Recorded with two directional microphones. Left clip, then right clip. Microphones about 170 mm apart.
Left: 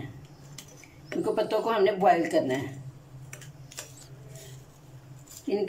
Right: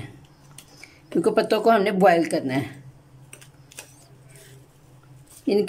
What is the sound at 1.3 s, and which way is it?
Speech, 75° right (ahead or behind).